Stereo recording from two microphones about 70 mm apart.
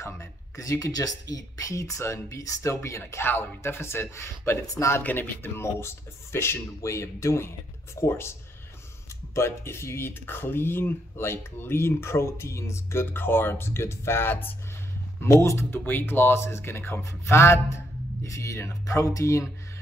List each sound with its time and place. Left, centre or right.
0.0 s speech: left
5.0 s speech: left
15.2 s speech: left
15.7 s speech: left